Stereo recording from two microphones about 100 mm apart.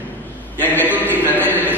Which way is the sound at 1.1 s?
20° right (ahead or behind).